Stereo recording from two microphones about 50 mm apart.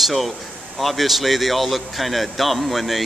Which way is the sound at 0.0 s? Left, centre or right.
Centre.